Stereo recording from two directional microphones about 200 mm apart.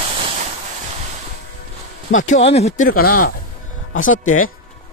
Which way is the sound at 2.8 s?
45° left (ahead or behind).